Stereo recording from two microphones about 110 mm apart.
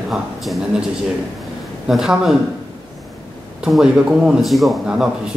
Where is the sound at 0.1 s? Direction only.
5° right (ahead or behind).